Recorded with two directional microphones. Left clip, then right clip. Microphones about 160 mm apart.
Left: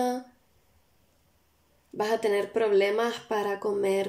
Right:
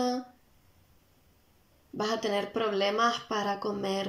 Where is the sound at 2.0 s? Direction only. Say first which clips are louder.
Left 4 dB; 25° left (ahead or behind).